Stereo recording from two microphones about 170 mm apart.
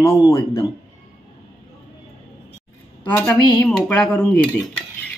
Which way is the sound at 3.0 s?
10° left (ahead or behind).